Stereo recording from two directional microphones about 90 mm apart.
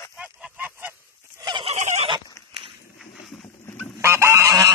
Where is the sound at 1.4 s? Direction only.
65° right (ahead or behind).